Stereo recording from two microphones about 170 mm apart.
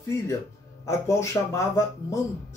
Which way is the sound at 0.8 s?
15° left (ahead or behind).